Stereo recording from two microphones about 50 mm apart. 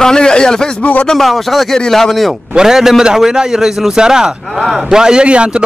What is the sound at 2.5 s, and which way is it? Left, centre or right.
Speech, centre.